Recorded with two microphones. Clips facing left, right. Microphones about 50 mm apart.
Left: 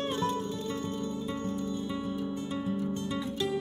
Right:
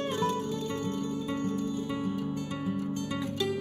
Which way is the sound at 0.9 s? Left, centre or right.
Right.